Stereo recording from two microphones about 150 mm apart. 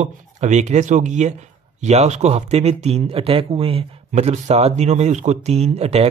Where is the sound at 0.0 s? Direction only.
50° right (ahead or behind).